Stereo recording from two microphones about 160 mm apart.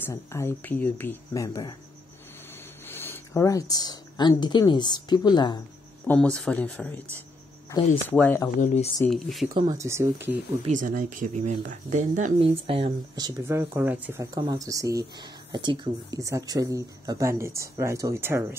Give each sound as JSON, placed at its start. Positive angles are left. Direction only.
{"t": 0.0, "sound": "speech", "side_deg": 15}
{"t": 2.9, "sound": "speech", "side_deg": 15}
{"t": 6.0, "sound": "speech", "side_deg": 5}
{"t": 8.1, "sound": "speech", "side_deg": 15}
{"t": 8.5, "sound": "speech", "side_deg": 45}
{"t": 9.1, "sound": "speech", "side_deg": 0}
{"t": 9.8, "sound": "speech", "side_deg": -15}
{"t": 10.7, "sound": "speech", "side_deg": -55}
{"t": 12.4, "sound": "speech", "side_deg": -35}
{"t": 13.4, "sound": "speech", "side_deg": -15}